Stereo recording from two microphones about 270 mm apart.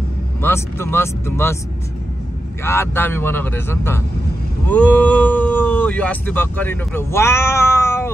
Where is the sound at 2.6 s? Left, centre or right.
Centre.